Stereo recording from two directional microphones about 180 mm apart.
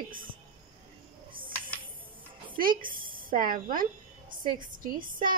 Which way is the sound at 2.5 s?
50° right (ahead or behind).